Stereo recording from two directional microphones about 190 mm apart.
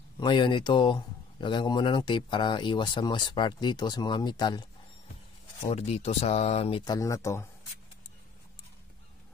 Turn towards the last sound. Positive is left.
turn(degrees=15)  # may be behind; listen again after turning